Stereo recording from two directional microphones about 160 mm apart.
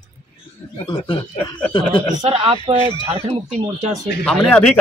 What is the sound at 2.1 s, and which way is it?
Speech, 35° right (ahead or behind).